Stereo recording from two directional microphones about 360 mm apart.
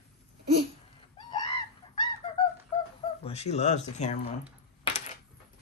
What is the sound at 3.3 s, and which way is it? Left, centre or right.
Speech, centre.